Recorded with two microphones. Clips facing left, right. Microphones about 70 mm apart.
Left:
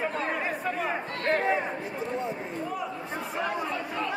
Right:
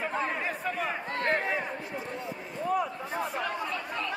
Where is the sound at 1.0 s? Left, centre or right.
Right.